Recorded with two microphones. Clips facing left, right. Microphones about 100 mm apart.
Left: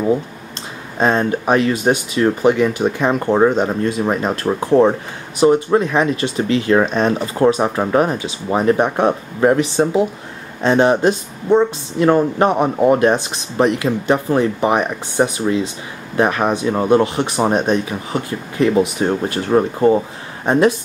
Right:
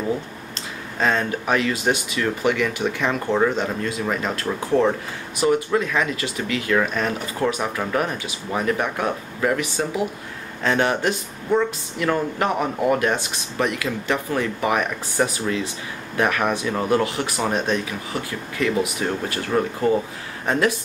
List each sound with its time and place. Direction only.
0.9 s speech: 25° left (ahead or behind)